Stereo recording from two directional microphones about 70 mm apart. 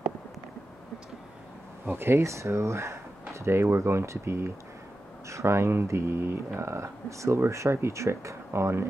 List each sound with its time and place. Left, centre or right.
1.9 s speech: right